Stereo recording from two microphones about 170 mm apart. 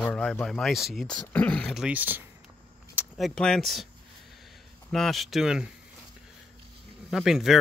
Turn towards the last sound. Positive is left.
turn(degrees=0)  # may be behind; listen again after turning